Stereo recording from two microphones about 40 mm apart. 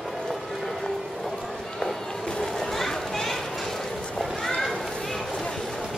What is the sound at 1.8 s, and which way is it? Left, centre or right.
Children playing, centre.